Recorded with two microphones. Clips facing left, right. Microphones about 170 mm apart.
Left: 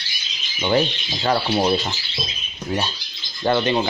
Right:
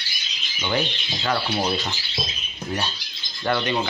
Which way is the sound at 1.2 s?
30° left (ahead or behind).